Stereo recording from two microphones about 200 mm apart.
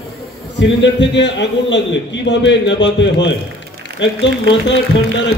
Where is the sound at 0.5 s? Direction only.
60° left (ahead or behind).